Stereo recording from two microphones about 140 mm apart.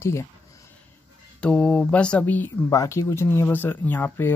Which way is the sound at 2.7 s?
20° left (ahead or behind).